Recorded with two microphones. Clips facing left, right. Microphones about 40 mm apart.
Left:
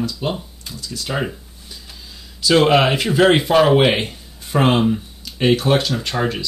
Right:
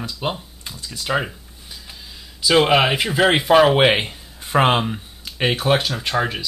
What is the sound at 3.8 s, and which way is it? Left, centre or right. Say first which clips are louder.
Speech: even; centre.